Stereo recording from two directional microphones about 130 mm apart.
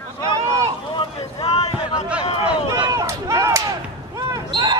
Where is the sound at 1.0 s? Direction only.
45° left (ahead or behind).